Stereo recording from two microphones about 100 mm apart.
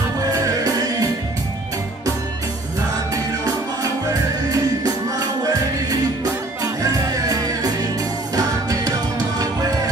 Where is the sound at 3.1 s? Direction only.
35° right (ahead or behind).